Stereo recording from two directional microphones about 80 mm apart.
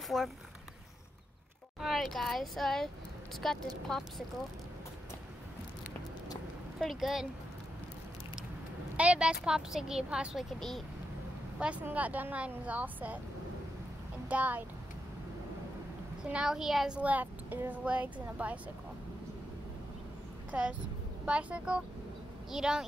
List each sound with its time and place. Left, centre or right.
0.1 s speech: centre
1.8 s speech: centre
6.8 s speech: centre
8.9 s speech: centre
11.8 s a woman's voice: centre
14.3 s a woman's voice: centre
16.3 s speech: centre
17.0 s a woman's voice: right
20.5 s speech: centre